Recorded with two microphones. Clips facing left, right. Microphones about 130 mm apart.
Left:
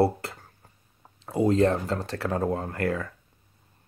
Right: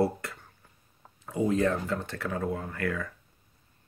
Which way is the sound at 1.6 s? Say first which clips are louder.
Left 4 dB; 30° left (ahead or behind).